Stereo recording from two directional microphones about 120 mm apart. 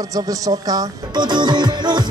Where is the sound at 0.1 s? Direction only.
30° right (ahead or behind).